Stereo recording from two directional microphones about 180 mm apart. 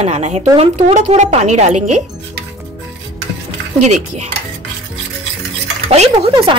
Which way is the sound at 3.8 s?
40° right (ahead or behind).